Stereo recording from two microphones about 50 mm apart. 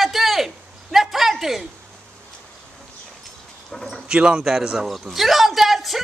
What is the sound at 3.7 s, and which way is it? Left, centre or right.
Speech, centre.